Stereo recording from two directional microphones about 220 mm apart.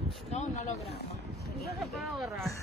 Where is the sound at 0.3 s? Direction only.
30° left (ahead or behind).